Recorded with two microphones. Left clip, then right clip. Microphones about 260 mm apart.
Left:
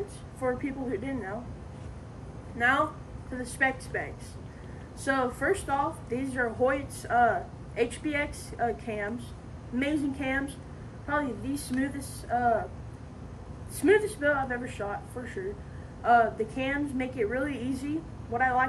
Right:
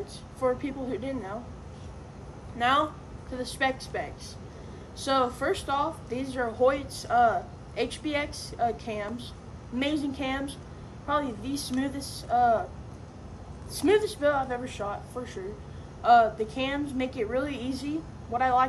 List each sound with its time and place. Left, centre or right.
0.4 s a woman's voice: centre
3.5 s a woman's voice: centre
13.7 s a woman's voice: centre